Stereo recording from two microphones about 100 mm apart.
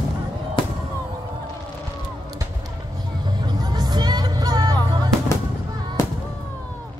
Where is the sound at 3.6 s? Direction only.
45° right (ahead or behind).